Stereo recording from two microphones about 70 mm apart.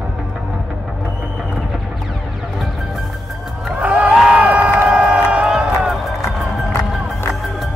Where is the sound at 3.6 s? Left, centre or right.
Centre.